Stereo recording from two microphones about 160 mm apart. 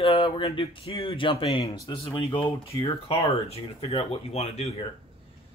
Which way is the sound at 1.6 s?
20° left (ahead or behind).